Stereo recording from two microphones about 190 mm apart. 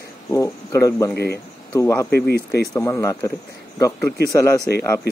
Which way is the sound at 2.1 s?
55° left (ahead or behind).